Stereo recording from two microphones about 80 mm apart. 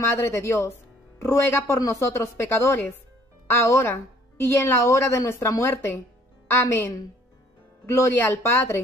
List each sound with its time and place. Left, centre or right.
0.0 s a woman's voice: left